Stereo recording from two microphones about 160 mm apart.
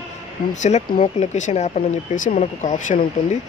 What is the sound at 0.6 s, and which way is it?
Speech, 45° left (ahead or behind).